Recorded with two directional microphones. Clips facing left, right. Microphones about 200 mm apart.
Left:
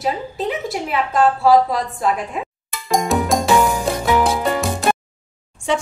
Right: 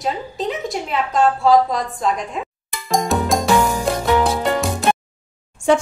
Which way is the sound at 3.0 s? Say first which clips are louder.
Left 1 dB; centre (ahead or behind).